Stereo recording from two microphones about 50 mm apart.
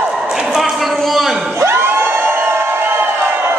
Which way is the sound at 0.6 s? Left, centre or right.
Centre.